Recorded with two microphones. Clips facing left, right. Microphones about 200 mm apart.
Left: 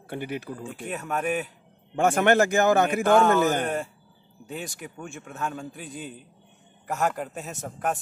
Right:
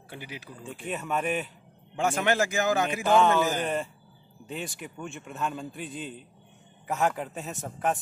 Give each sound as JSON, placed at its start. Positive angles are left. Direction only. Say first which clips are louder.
{"t": 0.1, "sound": "a man's voice", "louder": "left 10 dB", "side_deg": 55}
{"t": 0.8, "sound": "a man's voice", "louder": "left 1 dB", "side_deg": 5}
{"t": 2.0, "sound": "a man's voice", "louder": "left 6 dB", "side_deg": 60}
{"t": 4.5, "sound": "a man's voice", "louder": "left 1 dB", "side_deg": 0}